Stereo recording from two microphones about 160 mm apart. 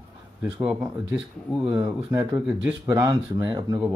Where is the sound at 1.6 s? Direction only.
20° right (ahead or behind).